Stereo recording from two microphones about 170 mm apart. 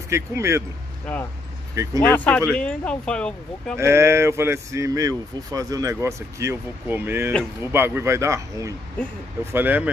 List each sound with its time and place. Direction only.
0.1 s speech: 15° right (ahead or behind)
2.0 s speech: 10° left (ahead or behind)
3.7 s speech: 15° right (ahead or behind)